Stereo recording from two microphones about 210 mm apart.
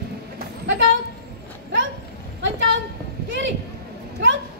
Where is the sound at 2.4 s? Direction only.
60° right (ahead or behind).